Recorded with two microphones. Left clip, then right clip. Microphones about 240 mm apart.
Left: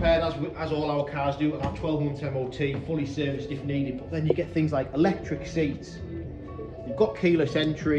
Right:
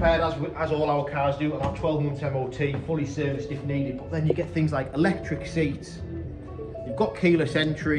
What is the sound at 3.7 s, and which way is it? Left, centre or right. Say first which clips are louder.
Speech: right 1 dB; centre.